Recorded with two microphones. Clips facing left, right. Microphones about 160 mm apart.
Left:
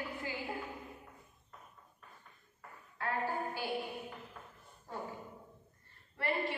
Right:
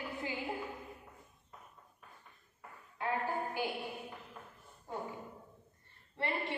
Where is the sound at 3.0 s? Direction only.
20° right (ahead or behind).